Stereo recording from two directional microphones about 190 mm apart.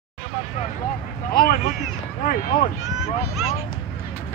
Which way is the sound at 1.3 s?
50° left (ahead or behind).